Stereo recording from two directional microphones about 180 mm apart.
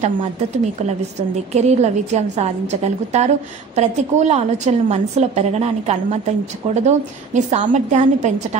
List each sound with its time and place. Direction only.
1.5 s a woman's voice: 40° right (ahead or behind)